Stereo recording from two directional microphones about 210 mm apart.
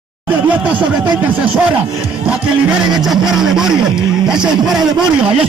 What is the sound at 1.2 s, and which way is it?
Speech, 10° right (ahead or behind).